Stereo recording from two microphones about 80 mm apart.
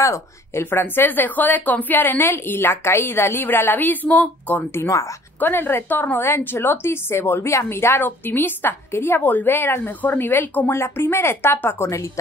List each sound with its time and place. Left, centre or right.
0.0 s speech: left
4.8 s speech: left
5.4 s a woman's voice: left